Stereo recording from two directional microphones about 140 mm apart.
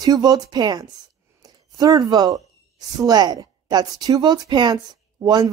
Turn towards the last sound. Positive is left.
turn(degrees=-25)  # may be behind; listen again after turning